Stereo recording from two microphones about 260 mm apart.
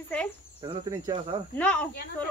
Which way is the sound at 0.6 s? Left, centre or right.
Right.